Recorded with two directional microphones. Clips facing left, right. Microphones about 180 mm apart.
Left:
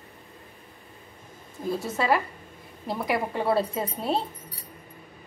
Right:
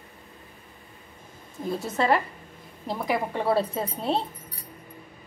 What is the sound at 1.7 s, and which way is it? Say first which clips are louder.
A woman's voice: right 1 dB; centre (ahead or behind).